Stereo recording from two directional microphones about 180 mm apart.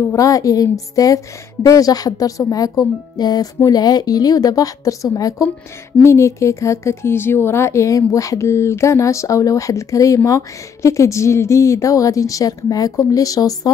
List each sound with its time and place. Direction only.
0.0 s a woman's voice: 15° left (ahead or behind)